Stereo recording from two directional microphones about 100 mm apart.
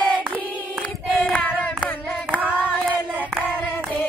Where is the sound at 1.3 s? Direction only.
15° left (ahead or behind).